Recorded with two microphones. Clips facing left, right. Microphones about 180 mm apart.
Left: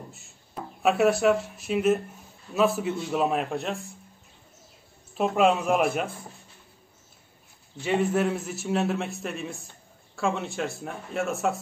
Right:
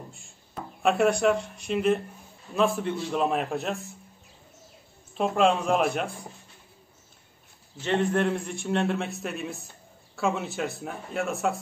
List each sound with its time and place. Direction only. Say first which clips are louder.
0.1 s a man's voice: left 1 dB; 5° left (ahead or behind)
5.1 s a man's voice: left 1 dB; 5° left (ahead or behind)
7.8 s a man's voice: even; 10° left (ahead or behind)